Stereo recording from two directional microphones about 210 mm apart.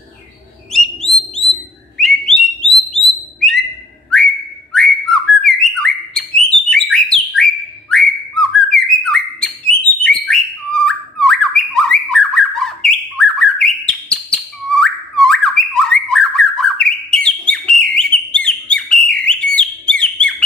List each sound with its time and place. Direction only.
0.7 s bird: centre (ahead or behind)
4.7 s bird: centre (ahead or behind)
7.9 s whistling: centre (ahead or behind)
8.7 s bird: centre (ahead or behind)
17.1 s whistle: 5° left (ahead or behind)
19.2 s bird: 5° left (ahead or behind)